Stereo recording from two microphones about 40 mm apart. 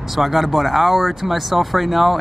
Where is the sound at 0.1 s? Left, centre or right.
Centre.